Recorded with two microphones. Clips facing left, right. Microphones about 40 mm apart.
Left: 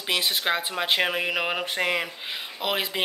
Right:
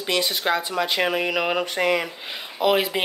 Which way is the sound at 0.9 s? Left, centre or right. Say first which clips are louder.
Right 3 dB; centre.